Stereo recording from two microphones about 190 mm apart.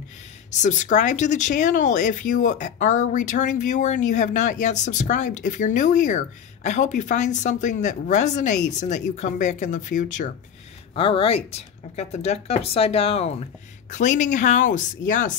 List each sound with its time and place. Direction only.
0.5 s speech: 40° left (ahead or behind)
11.0 s speech: 30° left (ahead or behind)